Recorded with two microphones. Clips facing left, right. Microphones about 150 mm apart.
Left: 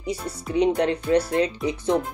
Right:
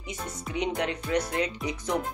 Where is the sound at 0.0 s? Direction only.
35° left (ahead or behind).